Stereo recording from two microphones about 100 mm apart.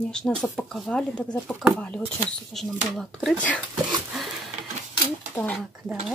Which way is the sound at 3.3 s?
15° left (ahead or behind).